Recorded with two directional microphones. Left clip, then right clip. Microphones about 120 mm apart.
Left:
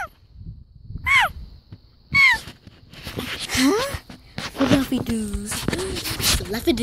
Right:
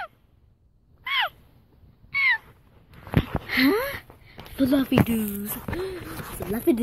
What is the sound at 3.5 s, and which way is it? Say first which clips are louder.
Speech: left 1 dB; 35° left (ahead or behind).